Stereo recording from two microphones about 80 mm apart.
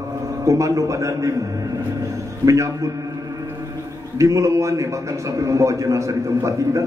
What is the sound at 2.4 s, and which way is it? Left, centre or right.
Speech, right.